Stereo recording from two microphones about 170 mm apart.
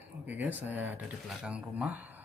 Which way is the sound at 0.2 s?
10° right (ahead or behind).